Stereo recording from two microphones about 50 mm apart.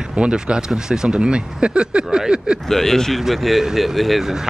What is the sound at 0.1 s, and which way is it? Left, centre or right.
Speech, centre.